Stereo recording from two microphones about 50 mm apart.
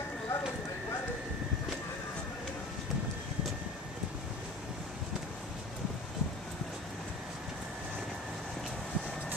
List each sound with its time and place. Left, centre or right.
0.3 s clip-clop: left